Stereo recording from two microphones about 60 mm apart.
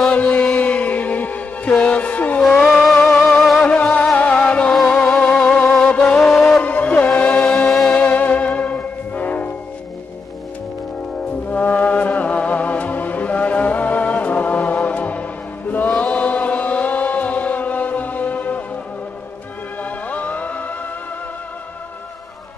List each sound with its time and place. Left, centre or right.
0.1 s music: left
3.6 s music: left
11.5 s music: left
15.9 s chant: left
19.8 s music: left